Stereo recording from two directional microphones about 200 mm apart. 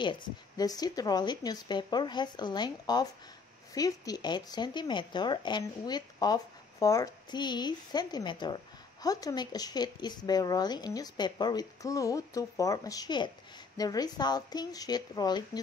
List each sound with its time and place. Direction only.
0.0 s speech: 20° left (ahead or behind)